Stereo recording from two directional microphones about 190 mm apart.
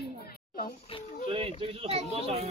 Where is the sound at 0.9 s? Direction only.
30° left (ahead or behind).